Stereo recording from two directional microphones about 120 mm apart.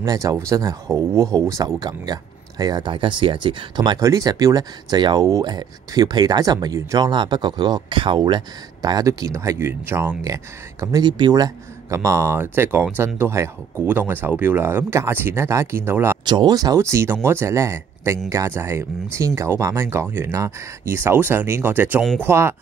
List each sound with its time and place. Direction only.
0.0 s speech: 30° right (ahead or behind)
4.0 s speech: 30° right (ahead or behind)
16.3 s speech: 35° right (ahead or behind); by 22.6 s 20° right (ahead or behind)